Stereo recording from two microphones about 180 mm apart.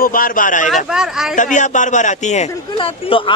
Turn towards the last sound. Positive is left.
turn(degrees=30)  # may be behind; listen again after turning